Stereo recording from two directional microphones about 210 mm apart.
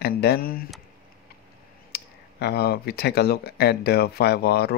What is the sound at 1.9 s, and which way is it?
Speech, 50° left (ahead or behind).